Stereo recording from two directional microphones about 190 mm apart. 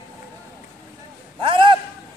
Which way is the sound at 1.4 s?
25° right (ahead or behind).